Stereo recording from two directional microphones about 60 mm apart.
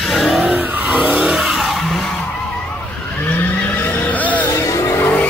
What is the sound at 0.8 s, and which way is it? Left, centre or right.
Vehicle, centre.